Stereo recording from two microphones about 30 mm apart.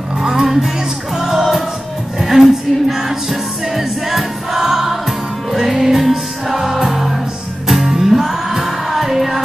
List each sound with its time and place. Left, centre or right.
0.2 s music: centre